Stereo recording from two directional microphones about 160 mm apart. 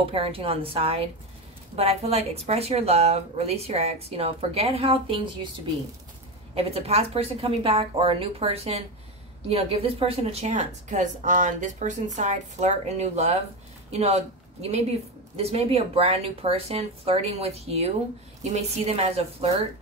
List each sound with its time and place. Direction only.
0.0 s a woman's voice: 35° right (ahead or behind)
6.5 s a woman's voice: 40° right (ahead or behind)